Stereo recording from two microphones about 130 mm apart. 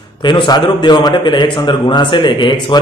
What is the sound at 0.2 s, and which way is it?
A man's voice, 40° left (ahead or behind).